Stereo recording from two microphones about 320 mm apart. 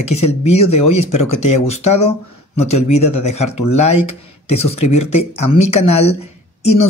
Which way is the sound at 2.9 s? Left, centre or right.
Left.